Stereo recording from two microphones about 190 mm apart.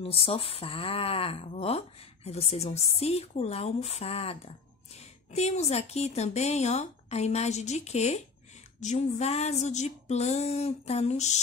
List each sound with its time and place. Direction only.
0.0 s speech: 30° left (ahead or behind)